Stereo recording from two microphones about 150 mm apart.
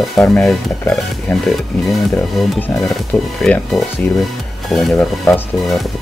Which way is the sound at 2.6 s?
5° left (ahead or behind).